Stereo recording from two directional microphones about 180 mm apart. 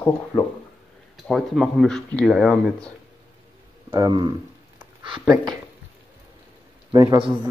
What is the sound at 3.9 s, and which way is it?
Speech, 25° right (ahead or behind).